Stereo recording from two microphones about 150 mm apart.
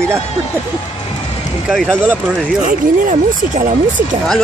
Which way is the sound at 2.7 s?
60° right (ahead or behind).